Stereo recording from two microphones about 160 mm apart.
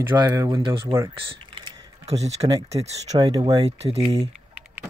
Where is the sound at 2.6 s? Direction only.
40° right (ahead or behind).